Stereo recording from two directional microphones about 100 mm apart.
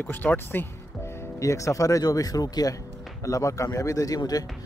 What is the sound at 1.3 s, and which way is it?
A man's voice, 30° left (ahead or behind).